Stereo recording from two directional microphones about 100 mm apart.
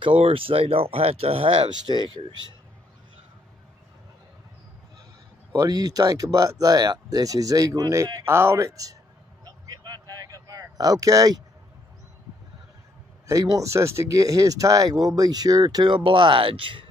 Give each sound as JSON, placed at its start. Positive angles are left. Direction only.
{"t": 0.0, "sound": "speech", "side_deg": -65}
{"t": 1.7, "sound": "speech", "side_deg": -50}
{"t": 5.5, "sound": "speech", "side_deg": -40}
{"t": 9.4, "sound": "a sound", "side_deg": -40}
{"t": 13.3, "sound": "speech", "side_deg": -35}